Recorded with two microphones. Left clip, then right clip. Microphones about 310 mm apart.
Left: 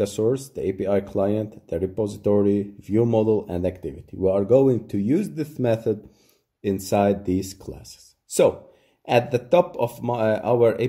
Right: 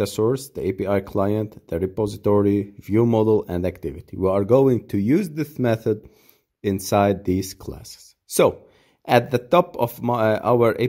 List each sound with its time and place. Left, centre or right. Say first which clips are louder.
0.0 s speech: right 1 dB; right